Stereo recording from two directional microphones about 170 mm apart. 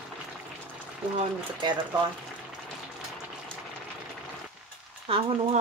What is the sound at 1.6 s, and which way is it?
Speech, 30° right (ahead or behind).